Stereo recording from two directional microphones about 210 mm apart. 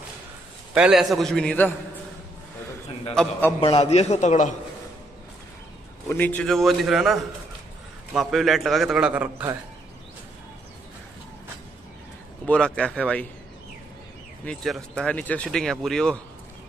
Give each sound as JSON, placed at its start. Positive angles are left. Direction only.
{"t": 0.7, "sound": "speech", "side_deg": -5}
{"t": 3.2, "sound": "a man's voice", "side_deg": 10}
{"t": 3.6, "sound": "a man's voice", "side_deg": 30}
{"t": 6.0, "sound": "speech", "side_deg": 10}
{"t": 12.4, "sound": "speech", "side_deg": 5}
{"t": 14.4, "sound": "speech", "side_deg": 0}